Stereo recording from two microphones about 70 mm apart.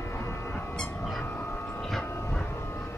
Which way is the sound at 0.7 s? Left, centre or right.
Centre.